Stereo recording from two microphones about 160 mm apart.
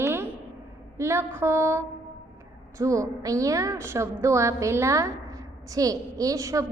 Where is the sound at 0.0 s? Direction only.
15° right (ahead or behind).